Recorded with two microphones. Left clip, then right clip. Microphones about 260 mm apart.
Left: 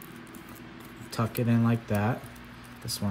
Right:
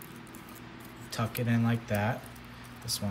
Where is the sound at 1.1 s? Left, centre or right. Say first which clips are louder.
Left 3 dB; centre.